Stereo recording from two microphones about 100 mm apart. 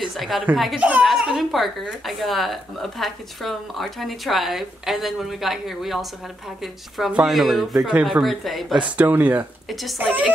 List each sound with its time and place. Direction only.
0.0 s a child's voice: centre (ahead or behind)
0.7 s speech: 15° right (ahead or behind)
1.0 s speech: 5° right (ahead or behind)
7.2 s speech: centre (ahead or behind)
8.7 s speech: 15° right (ahead or behind)
9.7 s speech: centre (ahead or behind)
9.9 s speech: 15° right (ahead or behind)